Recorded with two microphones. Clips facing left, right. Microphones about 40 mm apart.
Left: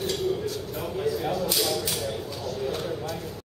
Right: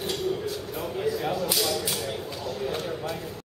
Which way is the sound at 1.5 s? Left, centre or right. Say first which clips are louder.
Even; centre.